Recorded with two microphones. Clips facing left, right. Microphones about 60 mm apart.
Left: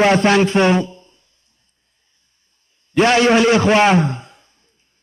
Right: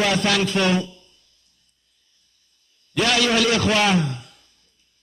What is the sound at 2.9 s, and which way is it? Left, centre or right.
A man's voice, left.